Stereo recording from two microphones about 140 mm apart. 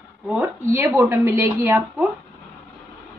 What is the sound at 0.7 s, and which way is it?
A woman's voice, 20° right (ahead or behind).